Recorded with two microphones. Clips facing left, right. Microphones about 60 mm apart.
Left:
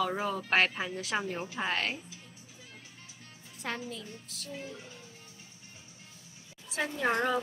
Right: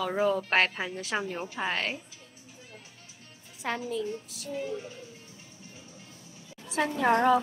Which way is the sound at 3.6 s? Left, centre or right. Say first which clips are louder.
Right 7 dB; centre.